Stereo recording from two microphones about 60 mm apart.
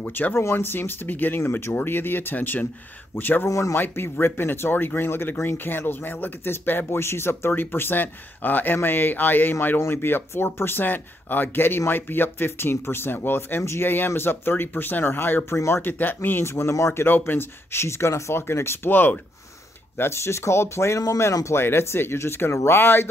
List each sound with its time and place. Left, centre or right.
0.0 s speech: left
3.4 s speech: left
3.7 s speech: left
15.5 s speech: left
15.8 s speech: left
20.0 s speech: left
21.2 s speech: left
21.5 s speech: left